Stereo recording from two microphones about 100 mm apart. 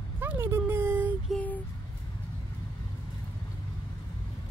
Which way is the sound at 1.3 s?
15° left (ahead or behind).